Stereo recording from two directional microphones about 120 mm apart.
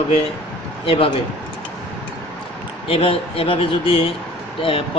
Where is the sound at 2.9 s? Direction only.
50° left (ahead or behind).